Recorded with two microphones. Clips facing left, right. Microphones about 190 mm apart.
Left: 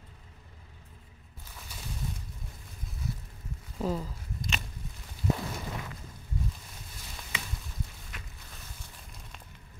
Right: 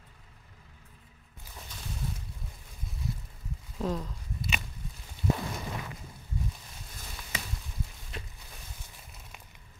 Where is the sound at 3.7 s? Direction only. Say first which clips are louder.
Left 1 dB; 5° left (ahead or behind).